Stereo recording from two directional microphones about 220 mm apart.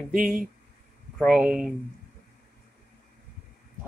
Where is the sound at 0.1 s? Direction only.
40° right (ahead or behind).